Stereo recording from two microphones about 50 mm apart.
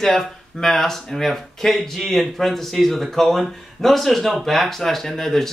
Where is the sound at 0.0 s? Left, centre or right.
Centre.